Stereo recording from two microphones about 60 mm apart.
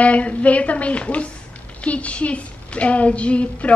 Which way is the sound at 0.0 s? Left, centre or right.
Left.